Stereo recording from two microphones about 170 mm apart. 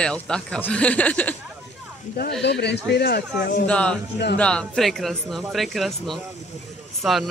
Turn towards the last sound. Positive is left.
turn(degrees=0)  # may be behind; listen again after turning